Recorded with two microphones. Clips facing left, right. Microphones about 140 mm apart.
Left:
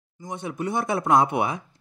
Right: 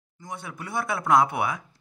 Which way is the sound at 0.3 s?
20° left (ahead or behind).